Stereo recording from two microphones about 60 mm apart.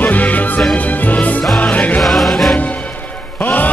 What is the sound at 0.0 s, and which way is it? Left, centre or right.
Music, left.